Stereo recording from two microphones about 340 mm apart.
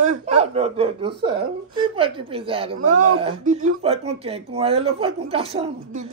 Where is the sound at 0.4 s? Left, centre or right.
Centre.